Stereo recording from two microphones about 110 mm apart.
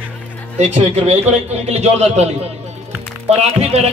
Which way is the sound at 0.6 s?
75° right (ahead or behind).